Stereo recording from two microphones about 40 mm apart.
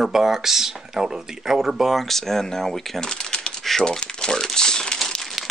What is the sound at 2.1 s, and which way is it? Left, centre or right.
Speech, centre.